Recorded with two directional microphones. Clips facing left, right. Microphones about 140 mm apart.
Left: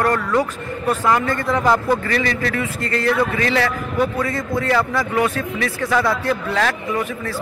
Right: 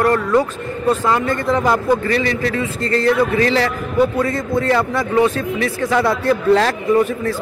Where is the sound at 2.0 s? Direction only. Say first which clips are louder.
Right 3 dB; 30° right (ahead or behind).